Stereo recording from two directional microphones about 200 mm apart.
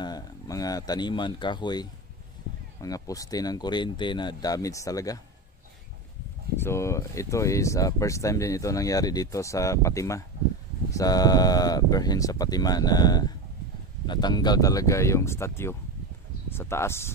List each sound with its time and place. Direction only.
0.0 s speech: 20° left (ahead or behind)
6.5 s speech: 10° left (ahead or behind)